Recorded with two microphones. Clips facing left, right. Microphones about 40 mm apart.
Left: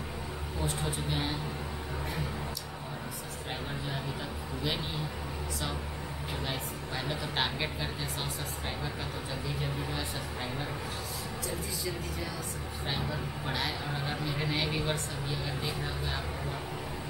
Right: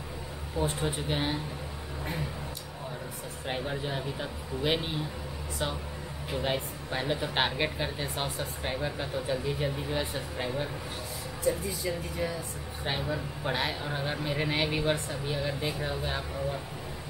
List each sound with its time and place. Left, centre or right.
0.6 s speech: right
3.4 s speech: right
6.4 s speech: right
13.5 s speech: right